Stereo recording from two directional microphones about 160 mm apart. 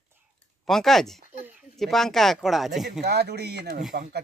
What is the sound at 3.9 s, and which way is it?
Speech, 80° right.